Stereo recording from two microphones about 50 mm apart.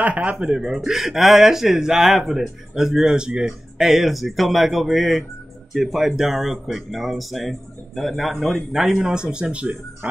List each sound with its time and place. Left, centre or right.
0.0 s speech: right
0.5 s speech: centre
3.8 s speech: centre
9.0 s a man's voice: centre